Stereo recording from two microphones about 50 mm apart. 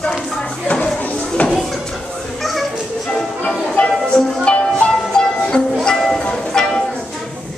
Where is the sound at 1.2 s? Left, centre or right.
Centre.